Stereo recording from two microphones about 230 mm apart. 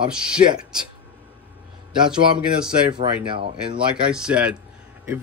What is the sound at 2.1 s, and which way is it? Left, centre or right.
Speech, centre.